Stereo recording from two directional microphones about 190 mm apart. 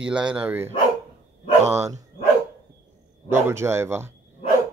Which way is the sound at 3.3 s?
15° right (ahead or behind).